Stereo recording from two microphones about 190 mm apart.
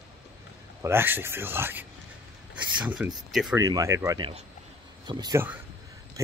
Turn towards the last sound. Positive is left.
turn(degrees=-20)  # may be behind; listen again after turning